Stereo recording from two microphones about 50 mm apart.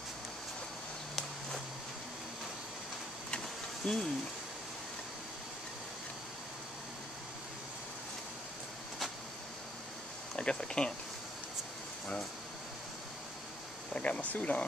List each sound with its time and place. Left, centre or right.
3.8 s speech: centre
10.3 s speech: centre
13.9 s speech: left
14.3 s speech: left